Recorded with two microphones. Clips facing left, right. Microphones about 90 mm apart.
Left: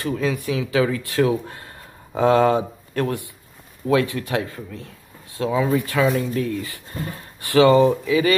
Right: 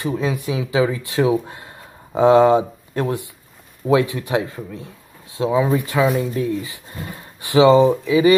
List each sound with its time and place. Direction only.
0.0 s speech: 20° right (ahead or behind)